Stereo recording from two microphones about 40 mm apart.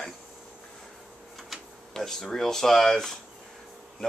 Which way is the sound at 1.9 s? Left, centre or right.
Centre.